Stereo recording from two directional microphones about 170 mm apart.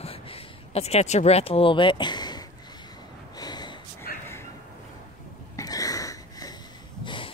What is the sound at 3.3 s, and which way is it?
Gasp, 25° left (ahead or behind).